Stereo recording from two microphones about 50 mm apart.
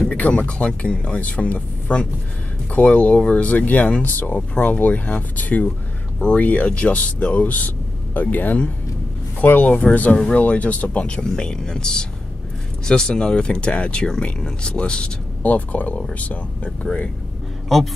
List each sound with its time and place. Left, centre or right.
0.1 s speech: left
15.4 s speech: left